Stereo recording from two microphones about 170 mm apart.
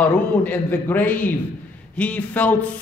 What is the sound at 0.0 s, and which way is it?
Speech, 10° left (ahead or behind).